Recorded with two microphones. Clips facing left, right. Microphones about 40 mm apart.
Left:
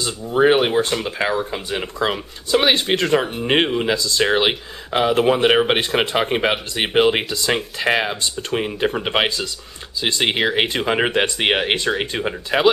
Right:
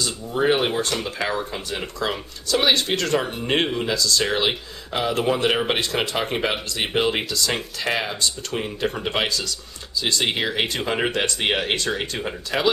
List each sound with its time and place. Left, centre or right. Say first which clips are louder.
0.0 s speech: left 6 dB; left